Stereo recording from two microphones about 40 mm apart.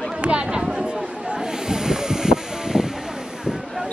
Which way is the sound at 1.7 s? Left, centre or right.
Centre.